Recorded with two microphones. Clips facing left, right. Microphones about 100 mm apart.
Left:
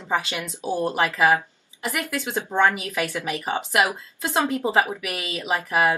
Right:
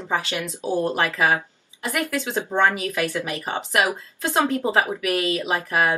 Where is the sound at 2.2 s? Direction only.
25° right (ahead or behind).